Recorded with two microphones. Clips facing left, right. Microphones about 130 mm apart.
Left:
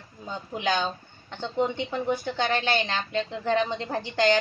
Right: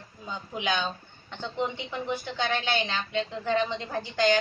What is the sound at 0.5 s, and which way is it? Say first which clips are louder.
Speech: left 3 dB; 40° left (ahead or behind).